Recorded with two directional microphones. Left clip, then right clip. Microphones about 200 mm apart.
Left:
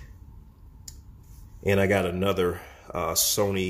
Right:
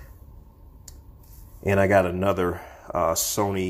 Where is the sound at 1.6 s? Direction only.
10° right (ahead or behind).